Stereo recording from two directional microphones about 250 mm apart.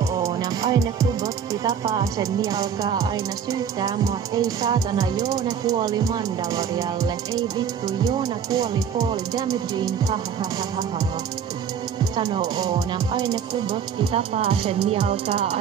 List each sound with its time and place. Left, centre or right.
0.1 s music: centre
8.2 s music: centre
12.2 s music: centre